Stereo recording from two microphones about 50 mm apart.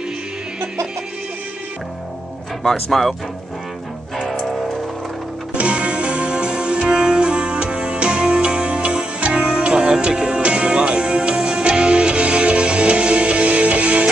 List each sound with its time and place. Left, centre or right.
2.6 s speech: centre
5.5 s music: right